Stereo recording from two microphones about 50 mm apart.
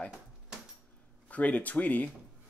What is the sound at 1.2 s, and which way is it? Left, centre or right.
Speech, left.